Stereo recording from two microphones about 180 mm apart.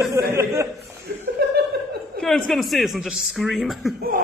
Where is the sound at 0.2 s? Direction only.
15° right (ahead or behind).